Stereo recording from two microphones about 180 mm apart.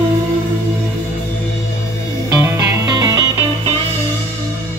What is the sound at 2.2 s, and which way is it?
Music, 20° right (ahead or behind).